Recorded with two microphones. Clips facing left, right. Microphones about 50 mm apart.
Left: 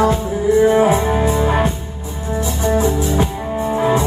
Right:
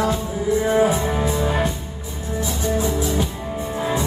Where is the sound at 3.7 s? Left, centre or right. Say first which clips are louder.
Left 7 dB; left.